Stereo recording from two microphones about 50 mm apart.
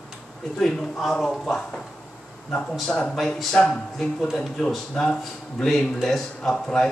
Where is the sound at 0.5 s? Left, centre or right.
Centre.